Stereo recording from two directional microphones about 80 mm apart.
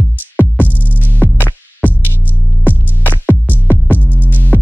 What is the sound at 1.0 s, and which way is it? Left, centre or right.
Music, left.